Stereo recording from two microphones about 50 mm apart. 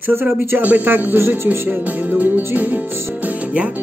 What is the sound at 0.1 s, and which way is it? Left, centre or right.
Speech, right.